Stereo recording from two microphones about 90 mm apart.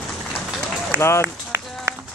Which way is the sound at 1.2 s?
30° right (ahead or behind).